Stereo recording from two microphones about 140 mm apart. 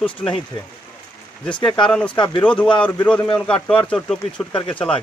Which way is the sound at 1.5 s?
35° left (ahead or behind).